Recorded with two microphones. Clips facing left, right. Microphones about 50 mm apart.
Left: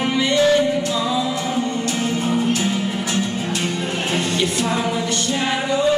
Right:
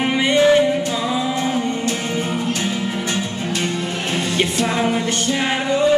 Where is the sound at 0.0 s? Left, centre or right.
Right.